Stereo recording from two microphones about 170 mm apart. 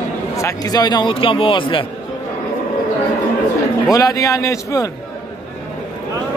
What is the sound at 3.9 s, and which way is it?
Speech, 20° left (ahead or behind).